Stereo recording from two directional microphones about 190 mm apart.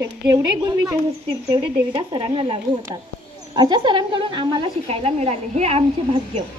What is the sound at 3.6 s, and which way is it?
A woman's voice, 25° right (ahead or behind).